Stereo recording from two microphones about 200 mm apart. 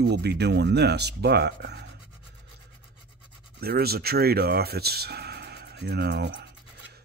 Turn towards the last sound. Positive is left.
turn(degrees=-60)  # may be behind; listen again after turning